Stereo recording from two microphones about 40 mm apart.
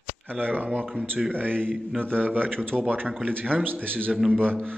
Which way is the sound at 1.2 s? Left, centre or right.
Centre.